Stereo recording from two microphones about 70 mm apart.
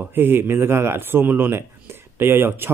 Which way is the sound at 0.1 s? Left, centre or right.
Right.